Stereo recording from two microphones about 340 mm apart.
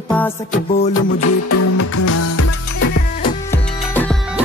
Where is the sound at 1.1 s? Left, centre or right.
Left.